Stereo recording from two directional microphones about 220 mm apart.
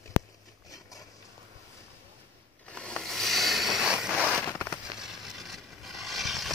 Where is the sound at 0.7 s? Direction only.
15° left (ahead or behind).